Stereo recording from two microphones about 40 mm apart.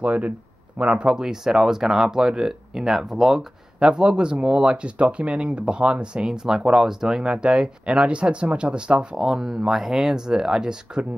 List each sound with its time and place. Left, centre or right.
0.0 s speech: right; by 3.4 s centre
3.8 s speech: right
6.2 s speech: centre
9.1 s speech: centre